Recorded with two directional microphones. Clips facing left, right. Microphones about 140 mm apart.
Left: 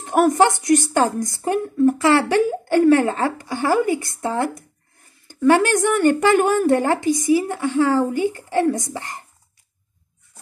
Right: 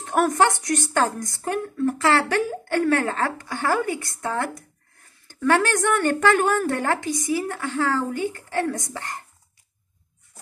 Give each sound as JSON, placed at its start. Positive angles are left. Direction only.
{"t": 0.0, "sound": "speech", "side_deg": 5}
{"t": 4.2, "sound": "a woman's voice", "side_deg": 20}
{"t": 8.1, "sound": "speech", "side_deg": 10}